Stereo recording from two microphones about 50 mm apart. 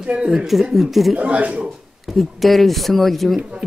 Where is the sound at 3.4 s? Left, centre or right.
Right.